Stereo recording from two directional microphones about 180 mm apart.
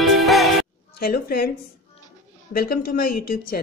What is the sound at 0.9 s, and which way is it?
Speech, 60° left (ahead or behind).